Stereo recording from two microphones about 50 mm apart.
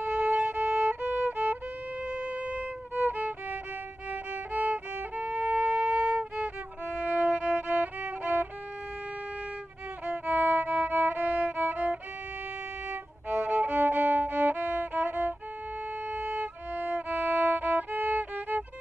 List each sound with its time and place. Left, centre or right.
0.0 s violin: right
2.0 s violin: right
3.2 s music: right
4.1 s violin: right
7.3 s music: right
10.0 s music: right
13.3 s music: right
14.6 s music: right
15.0 s violin: right
16.7 s violin: right
17.1 s music: right